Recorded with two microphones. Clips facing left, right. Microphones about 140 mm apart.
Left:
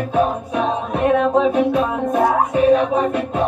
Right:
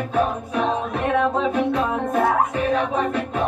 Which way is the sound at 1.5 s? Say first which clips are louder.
Left 4 dB; 20° left (ahead or behind).